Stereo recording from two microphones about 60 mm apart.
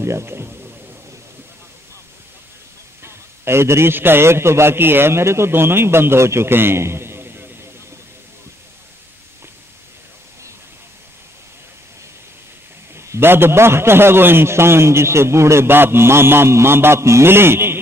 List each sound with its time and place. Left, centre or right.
0.0 s a man's voice: right
3.0 s a man's voice: right
12.9 s a sound: right
13.2 s a man's voice: right